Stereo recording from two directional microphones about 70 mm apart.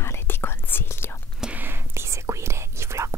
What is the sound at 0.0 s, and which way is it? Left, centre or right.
Whispering, left.